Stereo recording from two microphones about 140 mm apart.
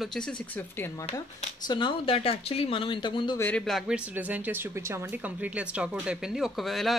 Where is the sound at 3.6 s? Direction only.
Centre (ahead or behind).